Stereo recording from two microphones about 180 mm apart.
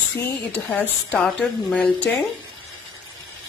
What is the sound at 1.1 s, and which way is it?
Speech, 5° left (ahead or behind).